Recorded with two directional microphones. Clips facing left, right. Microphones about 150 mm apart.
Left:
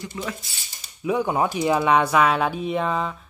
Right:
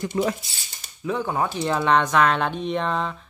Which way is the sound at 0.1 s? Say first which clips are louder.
Right 9 dB; 45° right (ahead or behind).